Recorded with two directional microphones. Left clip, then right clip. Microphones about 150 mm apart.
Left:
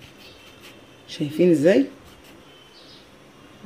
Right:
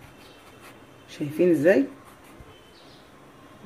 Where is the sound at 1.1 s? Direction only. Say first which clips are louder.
Left 3 dB; 40° left (ahead or behind).